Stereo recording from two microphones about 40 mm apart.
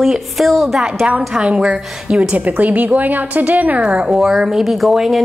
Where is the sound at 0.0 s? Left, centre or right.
Centre.